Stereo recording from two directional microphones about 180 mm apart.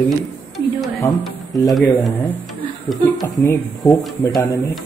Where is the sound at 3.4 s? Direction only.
15° left (ahead or behind).